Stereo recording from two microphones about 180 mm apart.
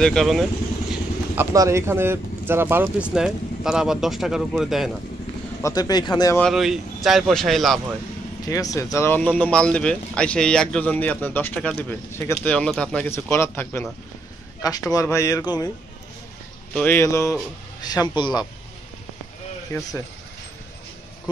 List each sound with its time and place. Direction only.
0.0 s speech: centre (ahead or behind)
1.3 s speech: 15° right (ahead or behind)
5.6 s speech: 20° left (ahead or behind)
6.5 s speech: centre (ahead or behind)
8.5 s speech: 20° left (ahead or behind)
16.7 s speech: 10° left (ahead or behind)